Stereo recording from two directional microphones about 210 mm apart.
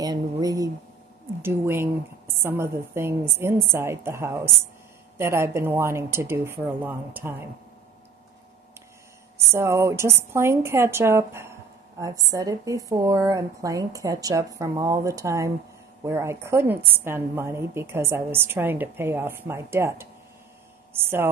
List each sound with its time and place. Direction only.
0.0 s a sound: 15° right (ahead or behind)
1.4 s a woman's voice: 10° right (ahead or behind)
9.5 s a woman's voice: 15° right (ahead or behind)